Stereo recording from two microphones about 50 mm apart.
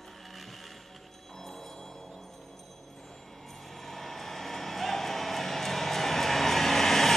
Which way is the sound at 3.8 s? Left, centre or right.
Centre.